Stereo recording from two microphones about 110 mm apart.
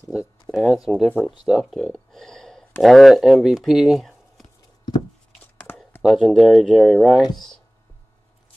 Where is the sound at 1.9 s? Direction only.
5° left (ahead or behind).